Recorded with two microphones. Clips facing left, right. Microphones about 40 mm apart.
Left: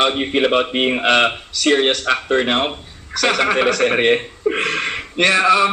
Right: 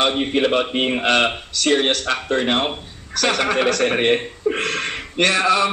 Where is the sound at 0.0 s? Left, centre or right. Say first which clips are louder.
Left 2 dB; centre.